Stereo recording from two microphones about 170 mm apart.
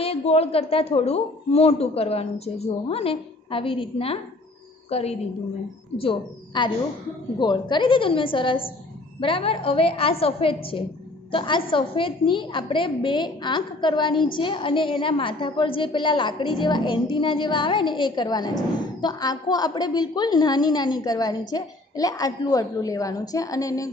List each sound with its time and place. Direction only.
0.0 s a woman's voice: 35° left (ahead or behind); by 23.9 s 20° left (ahead or behind)